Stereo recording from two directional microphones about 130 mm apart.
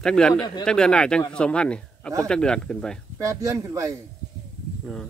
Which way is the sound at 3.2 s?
25° right (ahead or behind).